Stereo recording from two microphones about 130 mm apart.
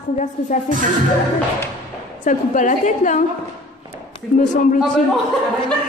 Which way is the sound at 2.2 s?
80° left.